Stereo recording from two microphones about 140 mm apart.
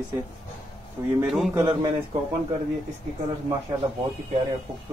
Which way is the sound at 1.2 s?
Centre (ahead or behind).